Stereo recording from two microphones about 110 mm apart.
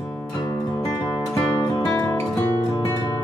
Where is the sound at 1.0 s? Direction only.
40° left (ahead or behind).